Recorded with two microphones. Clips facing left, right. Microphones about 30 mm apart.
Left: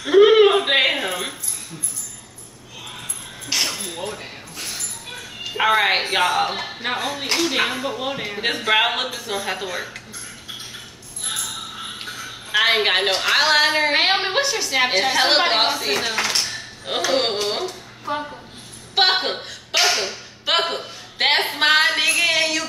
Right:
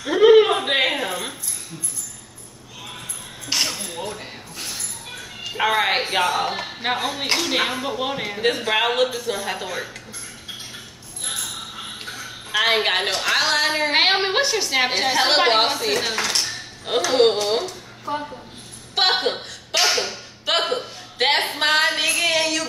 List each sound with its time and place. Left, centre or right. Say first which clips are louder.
0.0 s a sound: left 1 dB; centre
3.9 s a sound: left 1 dB; centre
5.6 s music: left 2 dB; centre
6.8 s a woman's voice: right 2 dB; centre
8.4 s a woman's voice: left 2 dB; centre
12.0 s a woman's voice: left 1 dB; centre
14.1 s a woman's voice: right 1 dB; centre
14.9 s a woman's voice: left 3 dB; centre
18.9 s a sound: left 1 dB; centre